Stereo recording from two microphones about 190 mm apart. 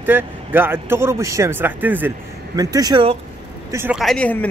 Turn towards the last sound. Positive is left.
turn(degrees=5)  # may be behind; listen again after turning